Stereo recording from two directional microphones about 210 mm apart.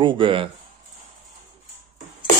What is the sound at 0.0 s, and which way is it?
Speech, 25° right (ahead or behind).